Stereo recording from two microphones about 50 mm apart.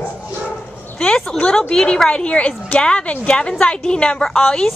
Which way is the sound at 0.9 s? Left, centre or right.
Left.